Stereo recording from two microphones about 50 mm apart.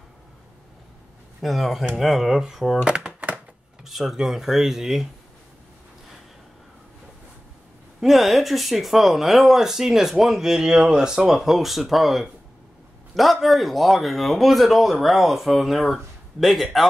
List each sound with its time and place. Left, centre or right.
1.4 s speech: centre
2.8 s a sound: centre
3.8 s speech: centre
8.0 s speech: centre